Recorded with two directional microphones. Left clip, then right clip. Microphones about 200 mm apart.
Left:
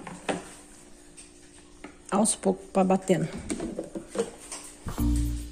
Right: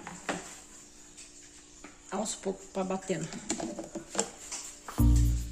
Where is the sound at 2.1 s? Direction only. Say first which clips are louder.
Left 9 dB; 45° left (ahead or behind).